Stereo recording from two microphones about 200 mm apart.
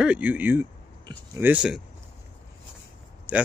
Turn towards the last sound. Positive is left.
turn(degrees=-5)  # may be behind; listen again after turning